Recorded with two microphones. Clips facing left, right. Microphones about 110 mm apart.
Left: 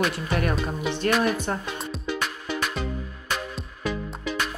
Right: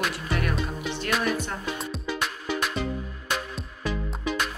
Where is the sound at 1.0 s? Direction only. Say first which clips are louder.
Left 5 dB; 40° left (ahead or behind).